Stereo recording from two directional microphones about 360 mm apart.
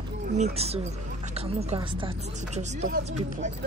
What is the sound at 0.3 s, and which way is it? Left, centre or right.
Speech, centre.